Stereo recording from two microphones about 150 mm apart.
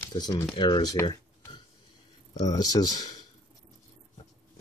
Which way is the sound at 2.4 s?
25° left (ahead or behind).